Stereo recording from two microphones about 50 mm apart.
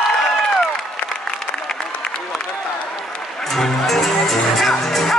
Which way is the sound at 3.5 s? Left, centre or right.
Centre.